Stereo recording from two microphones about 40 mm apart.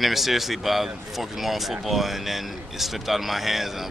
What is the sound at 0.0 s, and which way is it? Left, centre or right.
Speech, centre.